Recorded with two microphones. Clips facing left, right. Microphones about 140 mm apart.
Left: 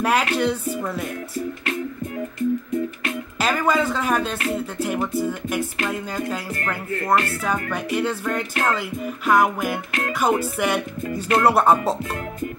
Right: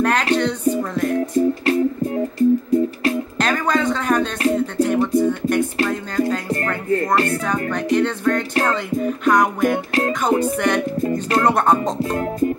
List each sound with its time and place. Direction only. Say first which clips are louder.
0.0 s a woman's voice: right 2 dB; 5° left (ahead or behind)
1.7 s music: right 9 dB; 30° right (ahead or behind)
3.3 s speech: left 3 dB; 5° left (ahead or behind)
4.6 s music: right 6 dB; 5° left (ahead or behind)
6.6 s music: right 7 dB; 30° right (ahead or behind)
7.4 s a woman's voice: right 4 dB; 5° left (ahead or behind)
8.6 s music: right 4 dB; 5° left (ahead or behind)
11.0 s music: right 3 dB; 35° right (ahead or behind)
11.4 s music: left 1 dB; 5° left (ahead or behind)
12.0 s music: right 8 dB; 30° right (ahead or behind)